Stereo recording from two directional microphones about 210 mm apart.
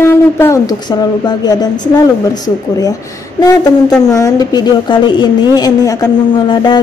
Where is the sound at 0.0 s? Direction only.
10° left (ahead or behind).